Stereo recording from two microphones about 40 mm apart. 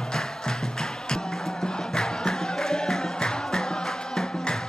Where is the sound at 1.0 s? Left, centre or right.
Centre.